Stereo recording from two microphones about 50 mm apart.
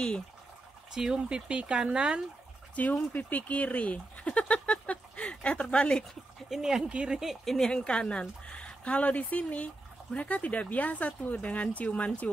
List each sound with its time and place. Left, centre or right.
0.9 s speech: centre
1.5 s speech: right
2.7 s speech: left
6.5 s speech: centre
6.9 s speech: right
7.2 s speech: centre
7.5 s speech: centre
7.8 s speech: left